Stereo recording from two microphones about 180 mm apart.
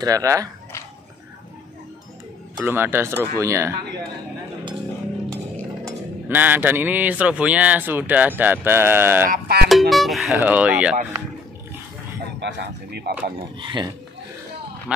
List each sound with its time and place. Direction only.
0.0 s speech: 20° right (ahead or behind)
2.6 s speech: 10° right (ahead or behind)
6.2 s speech: 10° right (ahead or behind)
9.3 s speech: 60° right (ahead or behind)
9.7 s speech: centre (ahead or behind)
12.4 s a man's voice: 70° right (ahead or behind)
13.6 s speech: 25° right (ahead or behind)
14.9 s speech: 5° right (ahead or behind)